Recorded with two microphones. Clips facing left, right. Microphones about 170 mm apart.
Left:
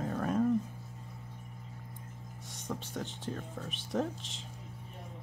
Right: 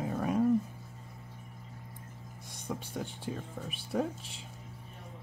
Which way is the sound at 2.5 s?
10° right (ahead or behind).